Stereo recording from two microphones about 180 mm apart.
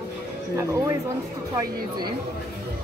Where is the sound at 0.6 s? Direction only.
15° right (ahead or behind).